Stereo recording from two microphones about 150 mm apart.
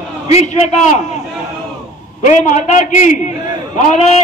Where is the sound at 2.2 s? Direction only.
55° left (ahead or behind).